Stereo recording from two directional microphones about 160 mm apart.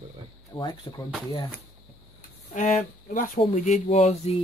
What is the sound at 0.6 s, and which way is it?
Speech, 25° left (ahead or behind).